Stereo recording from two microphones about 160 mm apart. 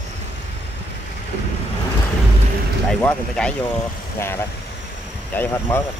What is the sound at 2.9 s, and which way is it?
Speech, 5° left (ahead or behind).